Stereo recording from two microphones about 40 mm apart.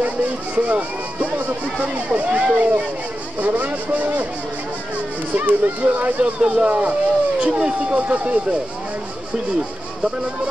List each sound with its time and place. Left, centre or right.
0.6 s speech: right
5.3 s speech: right